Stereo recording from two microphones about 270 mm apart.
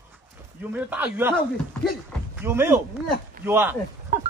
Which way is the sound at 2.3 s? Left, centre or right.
Centre.